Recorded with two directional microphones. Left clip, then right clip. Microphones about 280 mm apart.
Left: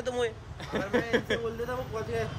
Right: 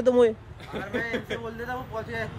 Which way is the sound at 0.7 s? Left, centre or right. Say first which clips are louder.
Left 2 dB; left.